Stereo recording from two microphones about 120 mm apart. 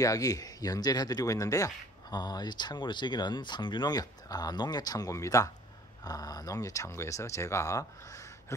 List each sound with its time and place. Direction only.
0.0 s speech: 30° left (ahead or behind)